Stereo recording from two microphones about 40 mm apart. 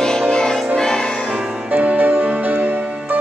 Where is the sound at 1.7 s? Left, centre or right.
Right.